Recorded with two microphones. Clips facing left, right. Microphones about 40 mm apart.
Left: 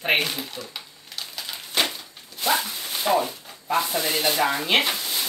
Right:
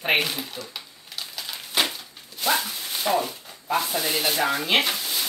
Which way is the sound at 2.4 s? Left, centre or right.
Centre.